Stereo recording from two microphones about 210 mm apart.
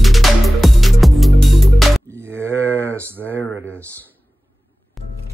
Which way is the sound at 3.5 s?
65° right (ahead or behind).